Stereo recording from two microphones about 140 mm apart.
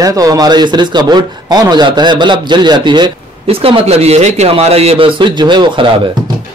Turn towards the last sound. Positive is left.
turn(degrees=-35)  # may be behind; listen again after turning